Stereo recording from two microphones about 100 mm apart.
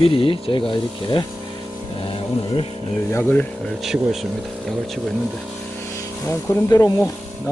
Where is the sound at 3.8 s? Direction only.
5° right (ahead or behind).